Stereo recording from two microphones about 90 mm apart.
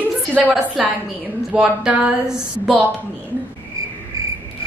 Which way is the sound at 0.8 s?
5° right (ahead or behind).